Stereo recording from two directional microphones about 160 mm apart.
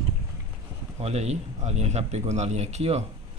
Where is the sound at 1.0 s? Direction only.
45° right (ahead or behind).